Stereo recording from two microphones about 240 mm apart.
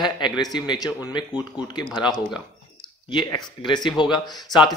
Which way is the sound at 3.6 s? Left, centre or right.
Centre.